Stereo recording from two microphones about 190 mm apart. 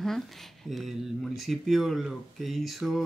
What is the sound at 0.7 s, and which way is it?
Speech, centre (ahead or behind).